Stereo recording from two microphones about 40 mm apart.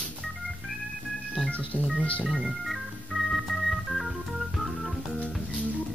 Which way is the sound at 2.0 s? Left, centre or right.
Left.